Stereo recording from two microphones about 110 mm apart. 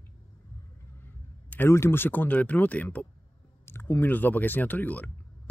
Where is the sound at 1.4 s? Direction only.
20° left (ahead or behind).